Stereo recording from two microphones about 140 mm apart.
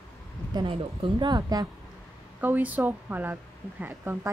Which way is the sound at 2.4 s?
10° right (ahead or behind).